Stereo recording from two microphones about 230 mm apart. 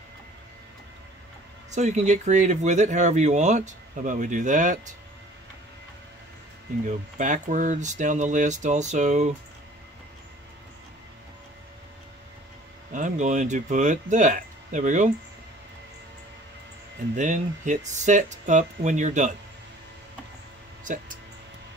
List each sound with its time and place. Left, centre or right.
1.7 s speech: right
6.9 s speech: right
12.9 s speech: right
17.1 s speech: right
20.8 s speech: right